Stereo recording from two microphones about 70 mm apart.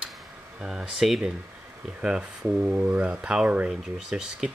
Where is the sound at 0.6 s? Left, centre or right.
Centre.